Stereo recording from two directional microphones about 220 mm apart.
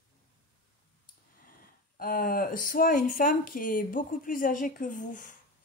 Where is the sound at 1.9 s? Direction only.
40° left (ahead or behind).